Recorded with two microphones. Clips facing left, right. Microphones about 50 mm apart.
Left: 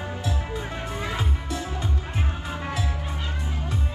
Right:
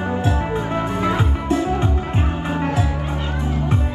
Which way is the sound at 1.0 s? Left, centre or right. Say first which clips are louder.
Right 10 dB; right.